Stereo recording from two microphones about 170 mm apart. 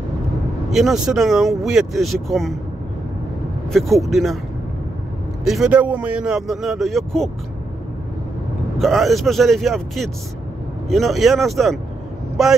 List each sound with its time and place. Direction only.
0.7 s speech: centre (ahead or behind)
3.7 s speech: centre (ahead or behind)
5.4 s speech: 5° right (ahead or behind)
8.7 s speech: centre (ahead or behind)